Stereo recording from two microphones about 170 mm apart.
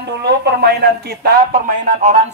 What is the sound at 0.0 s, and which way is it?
Speech, 85° right.